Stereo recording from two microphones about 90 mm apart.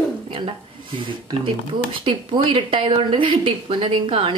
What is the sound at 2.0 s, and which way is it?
A woman's voice, 70° right (ahead or behind).